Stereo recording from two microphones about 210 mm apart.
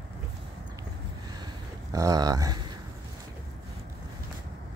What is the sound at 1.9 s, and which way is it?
Speech, 15° right (ahead or behind).